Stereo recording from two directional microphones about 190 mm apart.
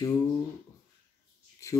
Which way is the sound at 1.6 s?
15° left (ahead or behind).